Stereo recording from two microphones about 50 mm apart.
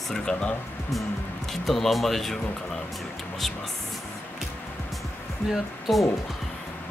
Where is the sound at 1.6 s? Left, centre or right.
Centre.